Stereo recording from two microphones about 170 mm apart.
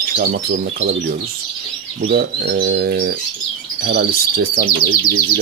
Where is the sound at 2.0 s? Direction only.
70° right (ahead or behind).